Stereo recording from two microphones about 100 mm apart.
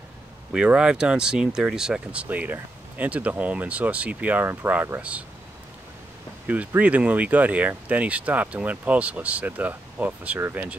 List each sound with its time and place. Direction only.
0.5 s speech: 10° right (ahead or behind)
2.2 s speech: 20° right (ahead or behind)
6.4 s speech: 15° right (ahead or behind)